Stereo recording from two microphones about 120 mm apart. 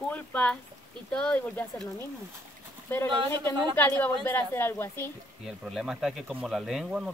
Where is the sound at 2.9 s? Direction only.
20° left (ahead or behind).